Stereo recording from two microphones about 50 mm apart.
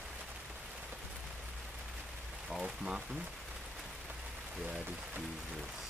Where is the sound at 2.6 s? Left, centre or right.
Centre.